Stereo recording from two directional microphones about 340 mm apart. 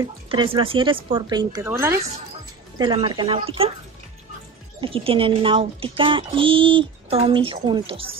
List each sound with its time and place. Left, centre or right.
0.0 s a child's voice: centre
4.7 s a child's voice: centre